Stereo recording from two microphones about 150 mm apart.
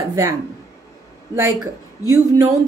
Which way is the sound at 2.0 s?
25° right (ahead or behind).